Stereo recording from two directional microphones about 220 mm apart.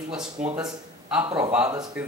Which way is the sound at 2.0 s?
5° right (ahead or behind).